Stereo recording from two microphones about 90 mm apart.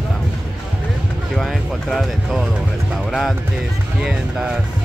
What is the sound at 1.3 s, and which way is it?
Speech, 5° left (ahead or behind).